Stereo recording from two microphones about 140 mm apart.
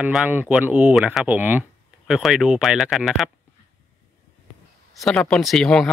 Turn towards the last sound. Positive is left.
turn(degrees=5)  # may be behind; listen again after turning